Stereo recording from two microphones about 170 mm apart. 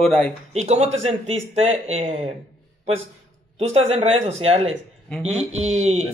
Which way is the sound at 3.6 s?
35° right (ahead or behind).